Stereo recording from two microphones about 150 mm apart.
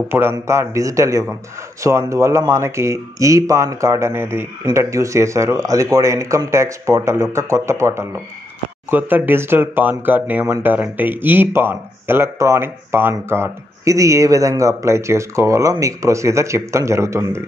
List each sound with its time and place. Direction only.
0.1 s speech: 15° right (ahead or behind)